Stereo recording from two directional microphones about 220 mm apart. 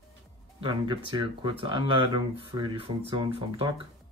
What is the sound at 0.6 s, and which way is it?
Speech, 20° right (ahead or behind).